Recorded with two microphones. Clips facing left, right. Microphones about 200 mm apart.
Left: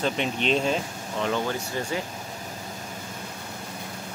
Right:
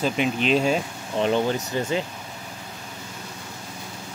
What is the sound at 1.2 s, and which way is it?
Speech, 20° right (ahead or behind).